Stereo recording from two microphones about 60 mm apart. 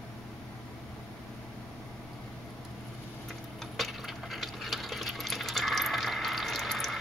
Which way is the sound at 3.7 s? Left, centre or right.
Centre.